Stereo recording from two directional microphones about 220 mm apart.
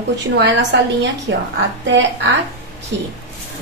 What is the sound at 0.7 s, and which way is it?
Speech, 55° right (ahead or behind).